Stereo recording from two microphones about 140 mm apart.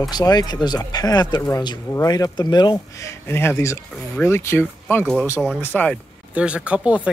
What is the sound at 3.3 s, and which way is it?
Speech, 15° left (ahead or behind).